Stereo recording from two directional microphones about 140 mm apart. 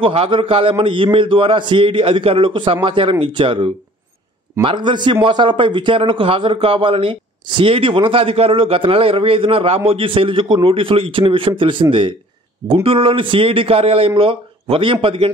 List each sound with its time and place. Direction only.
0.0 s a man's voice: 40° right (ahead or behind)